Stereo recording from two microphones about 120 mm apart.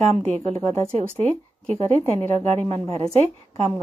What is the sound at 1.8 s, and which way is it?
A woman's voice, 60° right (ahead or behind).